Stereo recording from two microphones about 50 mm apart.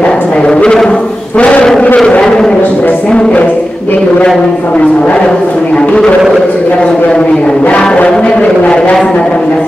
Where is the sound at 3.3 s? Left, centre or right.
Left.